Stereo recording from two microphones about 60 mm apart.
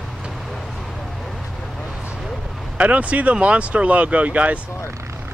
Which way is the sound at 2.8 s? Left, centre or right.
Right.